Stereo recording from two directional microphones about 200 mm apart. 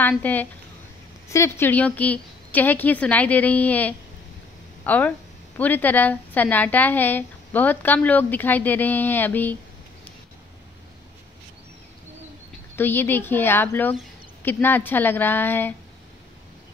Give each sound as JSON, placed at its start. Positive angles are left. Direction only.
{"t": 0.1, "sound": "speech", "side_deg": 10}
{"t": 12.7, "sound": "speech", "side_deg": 10}